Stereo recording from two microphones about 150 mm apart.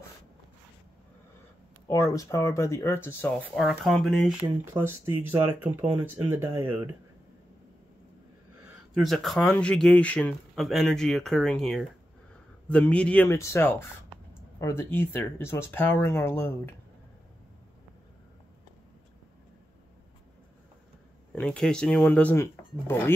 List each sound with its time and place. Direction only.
1.9 s speech: 20° left (ahead or behind)
3.5 s speech: centre (ahead or behind)
4.8 s speech: 15° right (ahead or behind)
8.9 s speech: centre (ahead or behind)
21.4 s speech: 5° left (ahead or behind)